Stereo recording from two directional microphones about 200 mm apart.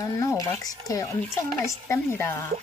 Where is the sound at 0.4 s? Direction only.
15° left (ahead or behind).